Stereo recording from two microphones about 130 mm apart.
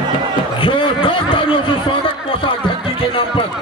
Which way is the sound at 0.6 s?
45° left (ahead or behind).